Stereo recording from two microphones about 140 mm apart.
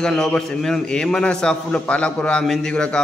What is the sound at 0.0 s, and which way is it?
A man's voice, 5° left (ahead or behind).